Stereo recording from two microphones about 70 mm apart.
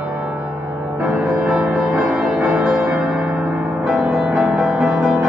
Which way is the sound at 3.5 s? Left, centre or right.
Centre.